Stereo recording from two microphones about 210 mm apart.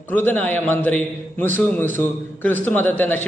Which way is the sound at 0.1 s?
10° left (ahead or behind).